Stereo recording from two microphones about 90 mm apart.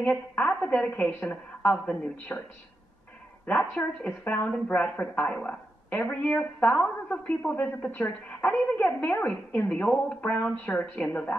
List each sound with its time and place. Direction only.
0.0 s a woman's voice: 15° left (ahead or behind)
3.4 s a woman's voice: 15° left (ahead or behind)